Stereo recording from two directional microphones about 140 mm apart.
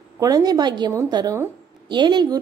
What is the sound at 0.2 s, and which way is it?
A woman's voice, 25° right (ahead or behind).